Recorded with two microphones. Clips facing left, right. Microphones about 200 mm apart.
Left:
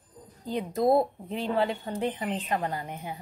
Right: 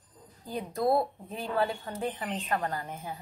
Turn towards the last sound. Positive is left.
turn(degrees=15)  # may be behind; listen again after turning